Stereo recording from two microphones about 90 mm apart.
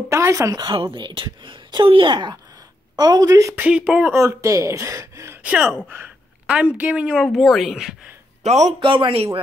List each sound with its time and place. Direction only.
0.1 s a woman's voice: 35° right (ahead or behind)
0.7 s speech: 75° right (ahead or behind); by 2.3 s 60° right (ahead or behind)
3.0 s a woman's voice: 45° right (ahead or behind)
3.5 s speech: 15° right (ahead or behind)
4.1 s a woman's voice: 30° right (ahead or behind)
5.4 s speech: 15° right (ahead or behind)
8.7 s speech: 70° right (ahead or behind); by 9.4 s 90° right